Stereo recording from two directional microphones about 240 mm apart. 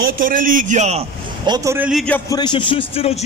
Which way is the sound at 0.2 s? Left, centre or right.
Right.